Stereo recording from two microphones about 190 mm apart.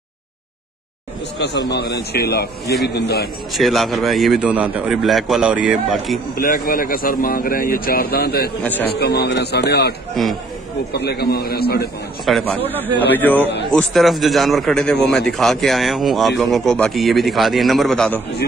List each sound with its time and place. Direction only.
1.4 s a man's voice: 65° left (ahead or behind)
3.5 s speech: centre (ahead or behind)
6.3 s a man's voice: 50° left (ahead or behind)
12.3 s speech: 5° left (ahead or behind)